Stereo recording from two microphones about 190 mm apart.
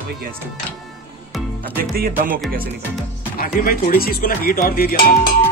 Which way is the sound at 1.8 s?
50° right (ahead or behind).